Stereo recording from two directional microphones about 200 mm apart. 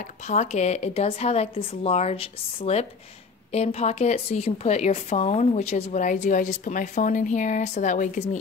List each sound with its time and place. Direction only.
0.3 s speech: 35° left (ahead or behind)